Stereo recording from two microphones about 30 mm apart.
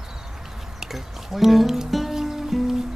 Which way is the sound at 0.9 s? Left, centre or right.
Centre.